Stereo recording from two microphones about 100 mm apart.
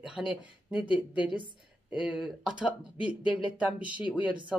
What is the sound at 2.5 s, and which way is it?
Speech, 10° right (ahead or behind).